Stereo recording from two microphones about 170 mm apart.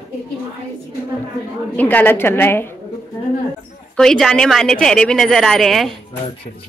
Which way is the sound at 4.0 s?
Centre (ahead or behind).